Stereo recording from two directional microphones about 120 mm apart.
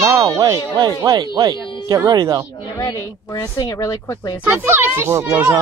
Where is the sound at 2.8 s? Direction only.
30° left (ahead or behind).